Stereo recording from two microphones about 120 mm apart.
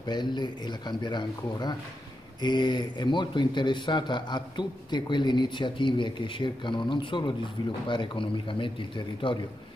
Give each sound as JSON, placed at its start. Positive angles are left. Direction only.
{"t": 0.0, "sound": "a man's voice", "side_deg": 40}